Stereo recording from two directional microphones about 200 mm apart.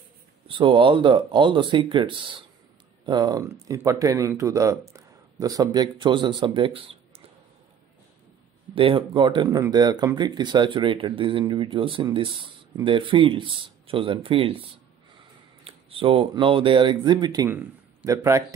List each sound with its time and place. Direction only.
0.5 s speech: 25° right (ahead or behind)
8.7 s speech: 25° right (ahead or behind)
15.6 s speech: 25° right (ahead or behind)